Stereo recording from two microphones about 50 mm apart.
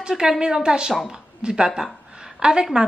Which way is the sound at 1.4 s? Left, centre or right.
Centre.